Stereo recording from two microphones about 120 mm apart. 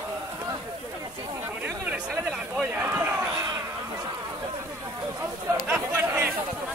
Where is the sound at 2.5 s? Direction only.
15° right (ahead or behind).